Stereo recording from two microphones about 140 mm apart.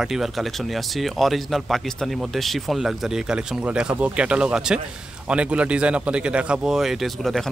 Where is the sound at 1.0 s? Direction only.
Centre (ahead or behind).